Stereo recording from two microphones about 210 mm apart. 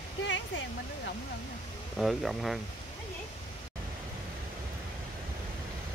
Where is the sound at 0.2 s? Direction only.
60° left (ahead or behind).